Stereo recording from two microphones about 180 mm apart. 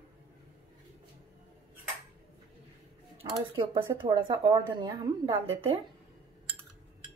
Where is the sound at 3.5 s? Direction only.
25° right (ahead or behind).